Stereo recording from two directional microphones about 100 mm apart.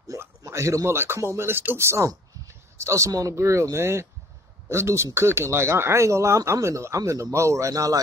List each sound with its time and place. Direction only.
0.4 s speech: 30° right (ahead or behind)